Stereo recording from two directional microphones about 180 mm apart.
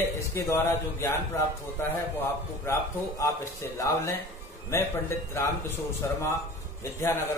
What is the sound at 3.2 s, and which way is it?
Speech, 20° left (ahead or behind).